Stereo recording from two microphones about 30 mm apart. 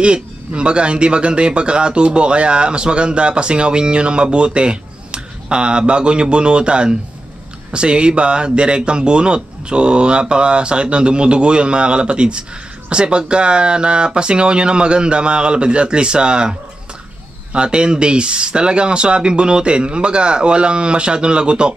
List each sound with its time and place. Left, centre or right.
0.0 s speech: right